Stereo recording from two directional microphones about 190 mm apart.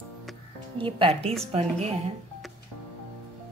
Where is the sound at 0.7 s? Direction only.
30° right (ahead or behind).